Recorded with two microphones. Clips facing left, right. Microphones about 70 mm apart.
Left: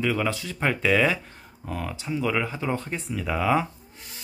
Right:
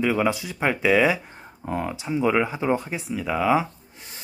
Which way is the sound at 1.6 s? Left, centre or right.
Right.